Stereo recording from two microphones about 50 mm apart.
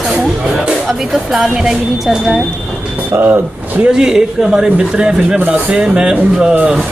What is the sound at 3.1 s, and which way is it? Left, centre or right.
Speech, right.